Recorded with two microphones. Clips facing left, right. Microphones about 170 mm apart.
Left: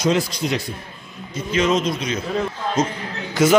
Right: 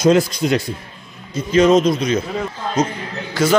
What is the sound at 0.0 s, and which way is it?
A man's voice, 45° right (ahead or behind).